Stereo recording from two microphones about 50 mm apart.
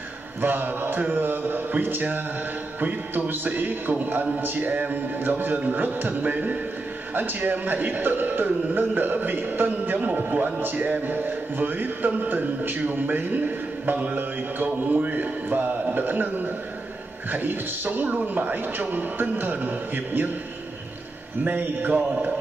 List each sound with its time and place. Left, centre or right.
0.4 s speech: right
9.9 s a man's voice: right
21.5 s speech: right